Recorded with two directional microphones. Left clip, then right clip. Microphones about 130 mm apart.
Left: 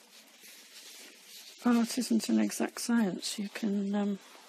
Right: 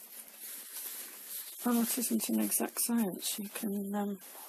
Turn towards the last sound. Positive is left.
turn(degrees=35)  # may be behind; listen again after turning